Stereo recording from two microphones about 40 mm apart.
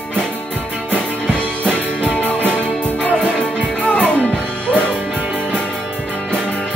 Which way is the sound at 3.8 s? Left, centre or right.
Left.